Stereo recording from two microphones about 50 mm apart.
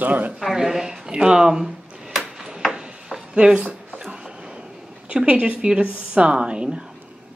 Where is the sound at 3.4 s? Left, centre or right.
Right.